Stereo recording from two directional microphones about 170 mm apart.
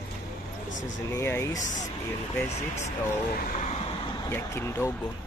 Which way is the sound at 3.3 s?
50° left (ahead or behind).